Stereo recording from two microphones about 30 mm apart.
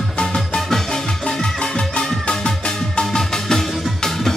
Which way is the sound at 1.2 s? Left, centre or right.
Left.